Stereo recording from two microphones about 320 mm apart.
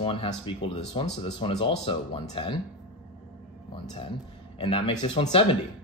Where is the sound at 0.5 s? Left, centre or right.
Centre.